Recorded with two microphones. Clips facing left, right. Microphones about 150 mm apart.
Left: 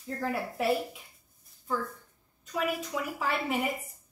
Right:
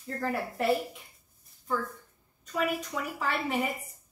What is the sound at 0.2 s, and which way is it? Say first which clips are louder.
Speech: even; centre (ahead or behind).